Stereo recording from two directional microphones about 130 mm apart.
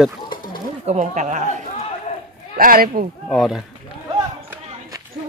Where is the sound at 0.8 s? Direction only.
60° right (ahead or behind).